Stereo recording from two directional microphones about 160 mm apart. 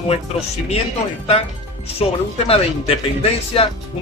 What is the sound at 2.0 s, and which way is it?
Speech, 35° left (ahead or behind).